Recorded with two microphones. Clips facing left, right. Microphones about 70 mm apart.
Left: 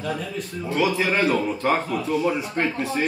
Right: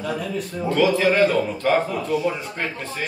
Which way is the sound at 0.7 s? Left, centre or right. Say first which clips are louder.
Right 4 dB; centre.